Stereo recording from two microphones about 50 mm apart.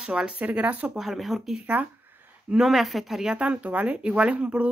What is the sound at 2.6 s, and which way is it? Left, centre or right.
Speech, centre.